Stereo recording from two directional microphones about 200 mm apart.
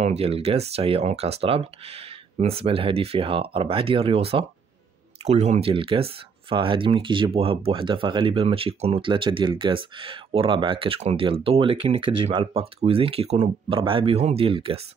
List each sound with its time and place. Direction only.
0.0 s speech: 30° right (ahead or behind)